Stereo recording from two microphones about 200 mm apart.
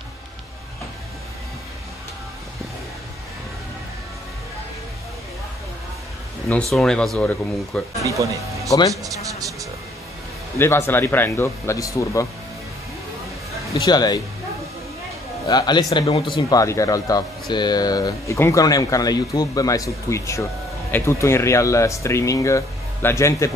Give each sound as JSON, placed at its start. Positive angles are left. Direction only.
{"t": 6.5, "sound": "speech", "side_deg": 5}
{"t": 8.6, "sound": "speech", "side_deg": 15}
{"t": 8.9, "sound": "a sound", "side_deg": -15}
{"t": 10.6, "sound": "speech", "side_deg": 10}
{"t": 13.8, "sound": "speech", "side_deg": 20}
{"t": 15.4, "sound": "speech", "side_deg": 20}